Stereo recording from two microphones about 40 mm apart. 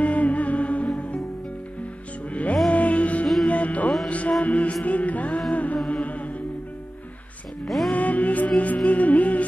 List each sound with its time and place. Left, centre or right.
0.0 s music: left
2.7 s music: left
5.5 s humming: left
5.9 s music: left
7.6 s music: centre
7.9 s music: left